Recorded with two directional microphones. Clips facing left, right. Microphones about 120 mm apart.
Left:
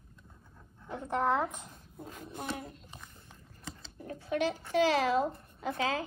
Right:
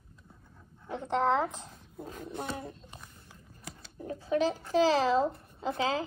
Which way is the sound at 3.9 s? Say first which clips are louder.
Right 4 dB; 30° right (ahead or behind).